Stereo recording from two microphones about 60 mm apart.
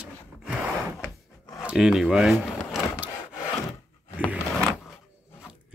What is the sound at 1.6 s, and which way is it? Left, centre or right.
Speech, centre.